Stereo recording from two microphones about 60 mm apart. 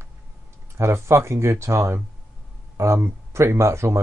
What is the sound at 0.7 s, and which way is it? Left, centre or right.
Speech, right.